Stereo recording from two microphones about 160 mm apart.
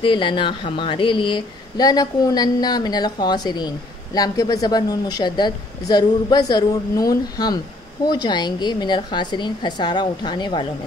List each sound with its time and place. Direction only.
0.0 s speech: 30° left (ahead or behind)